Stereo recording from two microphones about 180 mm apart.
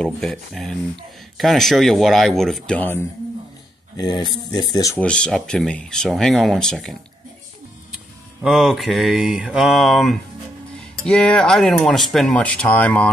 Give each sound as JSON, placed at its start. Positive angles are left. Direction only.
{"t": 0.0, "sound": "speech", "side_deg": 0}
{"t": 3.9, "sound": "speech", "side_deg": 25}
{"t": 4.9, "sound": "speech", "side_deg": 5}
{"t": 8.4, "sound": "speech", "side_deg": 0}